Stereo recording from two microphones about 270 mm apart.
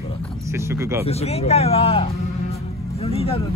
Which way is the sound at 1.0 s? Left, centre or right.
Left.